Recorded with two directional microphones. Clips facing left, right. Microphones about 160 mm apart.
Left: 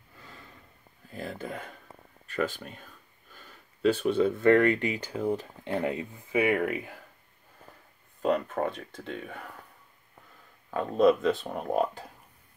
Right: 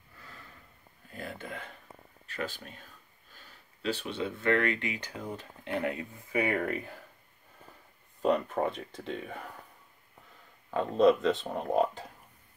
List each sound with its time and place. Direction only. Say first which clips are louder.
1.1 s a sound: left 4 dB; 35° left (ahead or behind)
3.3 s speech: left 4 dB; 50° left (ahead or behind); by 6.0 s 30° left (ahead or behind)
6.3 s speech: left 4 dB; 10° left (ahead or behind)
8.2 s speech: even; centre (ahead or behind)
10.7 s speech: left 1 dB; 5° left (ahead or behind)